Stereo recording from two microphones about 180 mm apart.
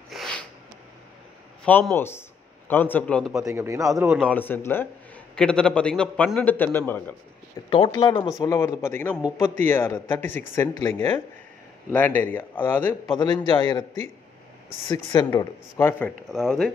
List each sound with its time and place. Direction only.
0.1 s snort: centre (ahead or behind)
1.6 s a man's voice: 10° left (ahead or behind)
3.4 s a man's voice: 15° right (ahead or behind)
4.2 s a man's voice: 10° left (ahead or behind)
7.7 s a man's voice: 25° left (ahead or behind); by 12.9 s 10° left (ahead or behind)
13.1 s a man's voice: 25° left (ahead or behind)
14.9 s a man's voice: 20° left (ahead or behind)
16.3 s speech: centre (ahead or behind)